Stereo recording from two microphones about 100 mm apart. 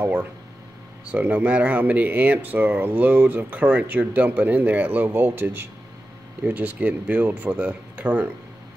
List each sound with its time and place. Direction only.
0.0 s speech: 20° right (ahead or behind)